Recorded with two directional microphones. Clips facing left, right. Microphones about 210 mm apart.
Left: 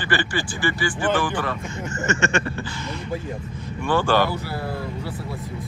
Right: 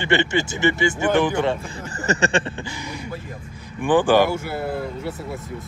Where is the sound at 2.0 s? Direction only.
35° right (ahead or behind).